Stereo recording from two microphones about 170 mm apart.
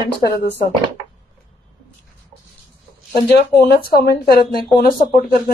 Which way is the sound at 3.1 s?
65° left (ahead or behind).